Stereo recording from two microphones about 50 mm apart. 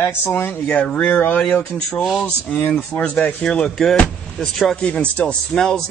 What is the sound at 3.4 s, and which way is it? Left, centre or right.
Music, centre.